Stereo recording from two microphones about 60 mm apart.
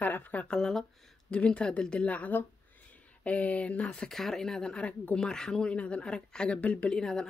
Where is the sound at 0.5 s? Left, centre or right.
Centre.